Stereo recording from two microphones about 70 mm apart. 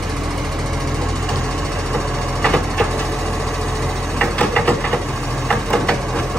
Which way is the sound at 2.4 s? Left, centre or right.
Centre.